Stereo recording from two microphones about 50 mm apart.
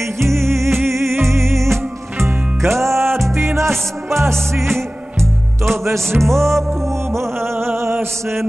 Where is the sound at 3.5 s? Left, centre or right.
Right.